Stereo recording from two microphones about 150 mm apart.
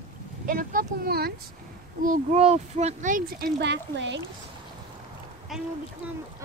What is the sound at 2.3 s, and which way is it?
Speech, 45° right (ahead or behind).